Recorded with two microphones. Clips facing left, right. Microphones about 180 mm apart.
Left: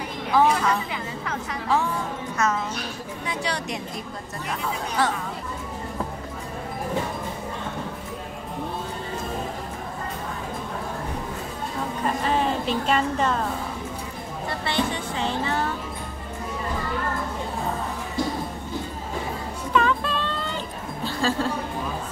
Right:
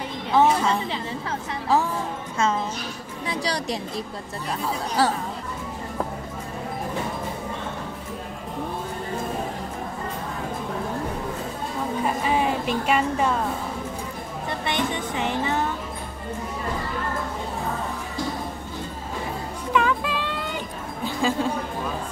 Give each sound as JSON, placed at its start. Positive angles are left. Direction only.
{"t": 0.3, "sound": "a woman's voice", "side_deg": -25}
{"t": 2.3, "sound": "a woman's voice", "side_deg": -30}
{"t": 12.0, "sound": "a sound", "side_deg": -10}
{"t": 14.7, "sound": "music", "side_deg": -20}
{"t": 19.7, "sound": "music", "side_deg": -10}